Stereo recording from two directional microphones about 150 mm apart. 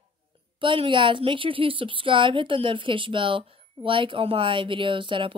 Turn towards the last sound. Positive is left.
turn(degrees=-35)  # may be behind; listen again after turning